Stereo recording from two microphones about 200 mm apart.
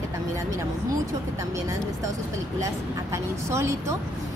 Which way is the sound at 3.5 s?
15° right (ahead or behind).